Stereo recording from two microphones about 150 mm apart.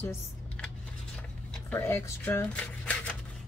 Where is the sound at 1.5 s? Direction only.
15° left (ahead or behind).